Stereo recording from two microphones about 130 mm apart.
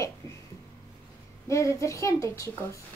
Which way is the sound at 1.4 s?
25° left (ahead or behind).